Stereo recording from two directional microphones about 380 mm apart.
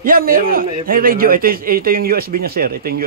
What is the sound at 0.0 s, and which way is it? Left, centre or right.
A man's voice, right.